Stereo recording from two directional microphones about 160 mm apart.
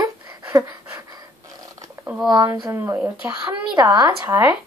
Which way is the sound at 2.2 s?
25° right (ahead or behind).